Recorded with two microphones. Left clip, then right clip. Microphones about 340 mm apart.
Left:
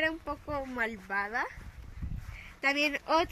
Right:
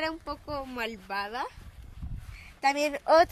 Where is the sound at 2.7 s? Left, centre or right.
Right.